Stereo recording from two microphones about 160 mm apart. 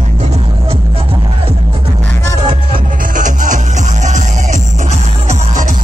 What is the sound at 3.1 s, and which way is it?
Music, 55° right (ahead or behind).